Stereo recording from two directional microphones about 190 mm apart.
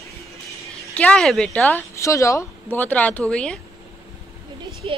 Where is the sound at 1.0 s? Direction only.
5° left (ahead or behind).